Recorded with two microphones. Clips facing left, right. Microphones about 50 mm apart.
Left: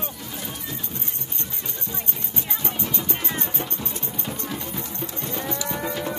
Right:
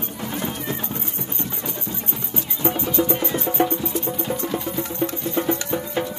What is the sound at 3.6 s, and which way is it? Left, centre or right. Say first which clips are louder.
Music: right 12 dB; right.